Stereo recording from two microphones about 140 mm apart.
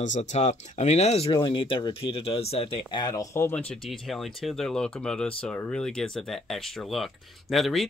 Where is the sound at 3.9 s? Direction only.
Centre (ahead or behind).